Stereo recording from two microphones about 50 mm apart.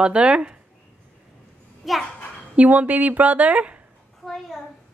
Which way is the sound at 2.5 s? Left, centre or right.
Right.